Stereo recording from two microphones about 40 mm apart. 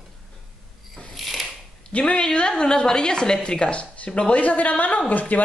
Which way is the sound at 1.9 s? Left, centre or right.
Left.